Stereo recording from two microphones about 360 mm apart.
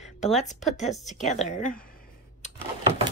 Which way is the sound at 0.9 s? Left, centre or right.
Centre.